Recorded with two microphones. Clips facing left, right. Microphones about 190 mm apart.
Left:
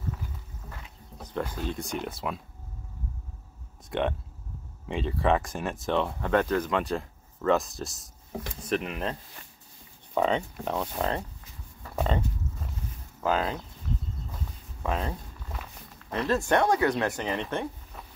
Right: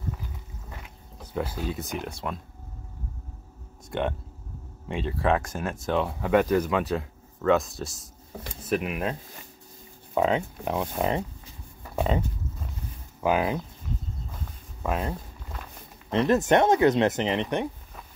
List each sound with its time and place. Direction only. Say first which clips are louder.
1.2 s speech: right 1 dB; 10° right (ahead or behind)
3.9 s speech: even; centre (ahead or behind)
10.1 s speech: right 2 dB; 5° right (ahead or behind)
11.8 s a sound: right 2 dB; 10° right (ahead or behind)
13.2 s speech: right 3 dB; 15° right (ahead or behind)
14.8 s a sound: right 2 dB; 5° right (ahead or behind)
16.1 s speech: right 5 dB; 20° right (ahead or behind)